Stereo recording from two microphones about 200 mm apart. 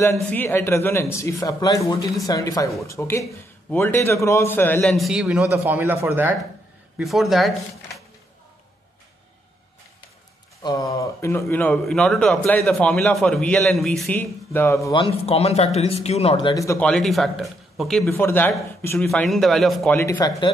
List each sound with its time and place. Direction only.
0.1 s a man's voice: 10° left (ahead or behind); by 6.3 s 10° right (ahead or behind)
7.0 s a man's voice: centre (ahead or behind)
10.6 s speech: 20° left (ahead or behind)
15.2 s speech: 30° left (ahead or behind)
16.8 s a man's voice: 5° left (ahead or behind)
18.0 s speech: 10° left (ahead or behind)